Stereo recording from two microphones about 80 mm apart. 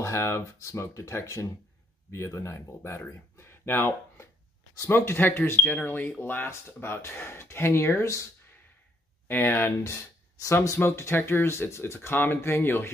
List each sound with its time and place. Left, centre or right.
0.0 s speech: left
5.6 s speech: centre; by 8.2 s left
9.3 s speech: left
10.4 s speech: left